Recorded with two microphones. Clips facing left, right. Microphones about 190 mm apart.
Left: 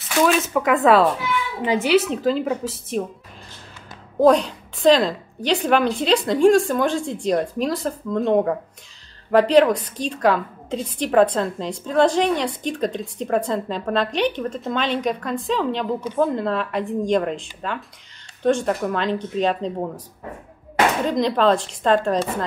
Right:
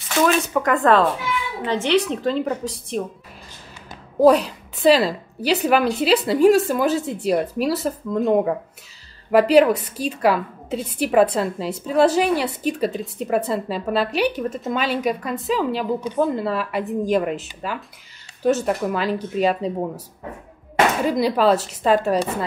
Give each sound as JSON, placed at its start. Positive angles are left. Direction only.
{"t": 0.2, "sound": "a woman's voice", "side_deg": 0}
{"t": 4.2, "sound": "a woman's voice", "side_deg": -5}
{"t": 21.0, "sound": "a woman's voice", "side_deg": -5}